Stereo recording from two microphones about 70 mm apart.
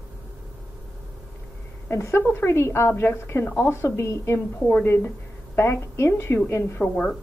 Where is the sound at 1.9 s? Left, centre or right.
Left.